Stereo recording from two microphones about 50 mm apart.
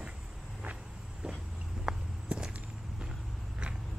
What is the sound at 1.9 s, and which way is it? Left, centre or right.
Walk, centre.